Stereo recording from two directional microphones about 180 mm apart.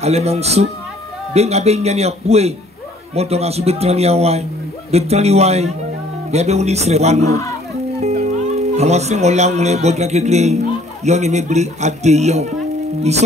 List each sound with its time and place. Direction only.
0.0 s a man's voice: 35° right (ahead or behind)